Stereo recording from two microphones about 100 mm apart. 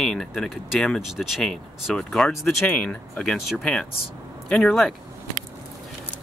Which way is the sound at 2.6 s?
20° left (ahead or behind).